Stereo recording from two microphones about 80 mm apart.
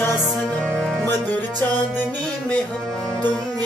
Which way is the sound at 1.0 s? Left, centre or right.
Left.